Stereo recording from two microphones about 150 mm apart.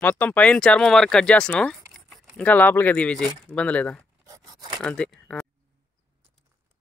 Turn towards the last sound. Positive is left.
turn(degrees=5)  # may be behind; listen again after turning